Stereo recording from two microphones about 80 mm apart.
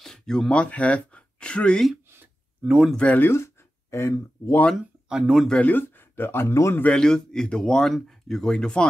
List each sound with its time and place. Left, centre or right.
0.0 s speech: centre
2.0 s a sound: right
3.0 s speech: centre
3.3 s speech: left
5.1 s speech: centre
5.5 s speech: centre; by 6.8 s left
6.9 s speech: centre